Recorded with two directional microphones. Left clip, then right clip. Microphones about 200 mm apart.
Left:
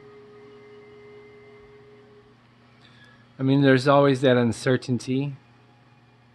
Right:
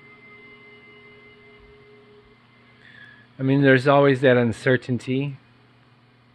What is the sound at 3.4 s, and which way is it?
Speech, 5° left (ahead or behind).